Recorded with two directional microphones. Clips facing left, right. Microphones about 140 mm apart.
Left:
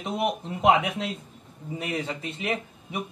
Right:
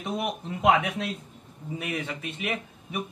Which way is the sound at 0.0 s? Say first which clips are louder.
Left 3 dB; 25° left (ahead or behind).